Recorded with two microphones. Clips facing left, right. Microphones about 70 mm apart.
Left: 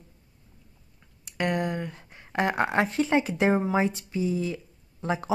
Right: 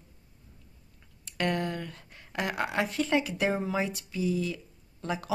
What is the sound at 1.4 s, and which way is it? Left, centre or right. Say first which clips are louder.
Speech: left 3 dB; left.